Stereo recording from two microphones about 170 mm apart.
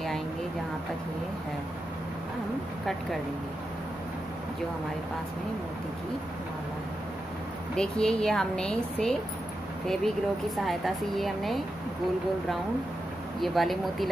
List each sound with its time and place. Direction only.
7.7 s a woman's voice: 5° left (ahead or behind)
13.4 s a woman's voice: centre (ahead or behind)